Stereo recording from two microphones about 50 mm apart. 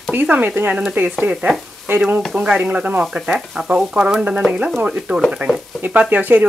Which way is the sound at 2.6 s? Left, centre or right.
Right.